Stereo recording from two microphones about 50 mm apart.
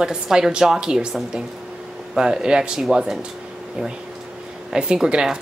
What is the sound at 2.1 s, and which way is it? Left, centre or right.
A woman's voice, centre.